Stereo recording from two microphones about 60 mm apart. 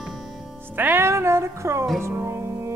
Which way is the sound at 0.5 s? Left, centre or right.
Right.